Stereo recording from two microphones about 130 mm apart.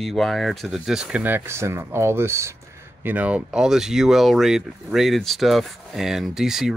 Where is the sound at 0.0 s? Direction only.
Centre (ahead or behind).